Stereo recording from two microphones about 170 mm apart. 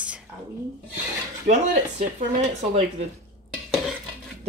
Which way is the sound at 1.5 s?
45° right (ahead or behind).